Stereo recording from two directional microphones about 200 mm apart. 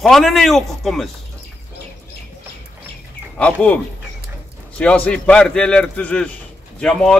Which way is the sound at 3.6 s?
5° left (ahead or behind).